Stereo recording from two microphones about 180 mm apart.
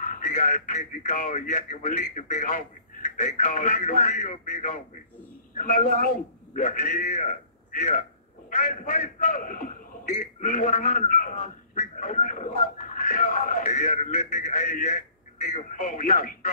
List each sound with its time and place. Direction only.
0.0 s a man's voice: 45° left (ahead or behind)